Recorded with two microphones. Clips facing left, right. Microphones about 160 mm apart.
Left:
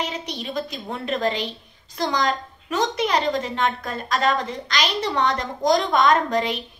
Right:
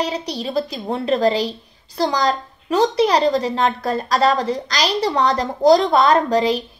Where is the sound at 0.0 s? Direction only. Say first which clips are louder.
Right 6 dB; 35° right (ahead or behind).